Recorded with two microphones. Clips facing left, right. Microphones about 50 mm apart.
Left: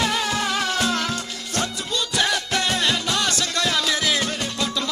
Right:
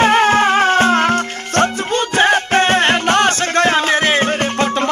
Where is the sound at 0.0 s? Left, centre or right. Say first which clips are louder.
Right 12 dB; right.